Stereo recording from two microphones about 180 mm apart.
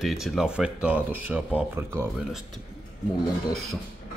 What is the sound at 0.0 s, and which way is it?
Speech, centre (ahead or behind).